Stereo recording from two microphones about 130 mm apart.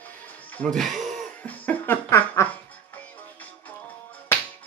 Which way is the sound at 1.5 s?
15° left (ahead or behind).